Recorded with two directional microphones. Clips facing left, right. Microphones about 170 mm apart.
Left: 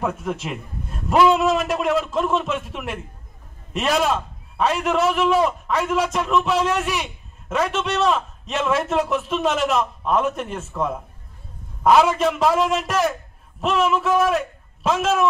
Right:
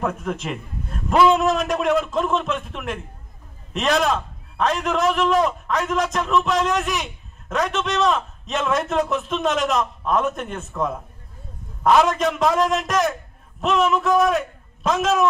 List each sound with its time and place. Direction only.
0.0 s a man's voice: 5° left (ahead or behind)